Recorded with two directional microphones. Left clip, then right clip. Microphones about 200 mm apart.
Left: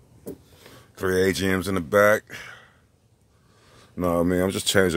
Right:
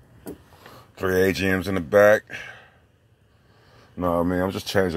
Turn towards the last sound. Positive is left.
turn(degrees=20)  # may be behind; listen again after turning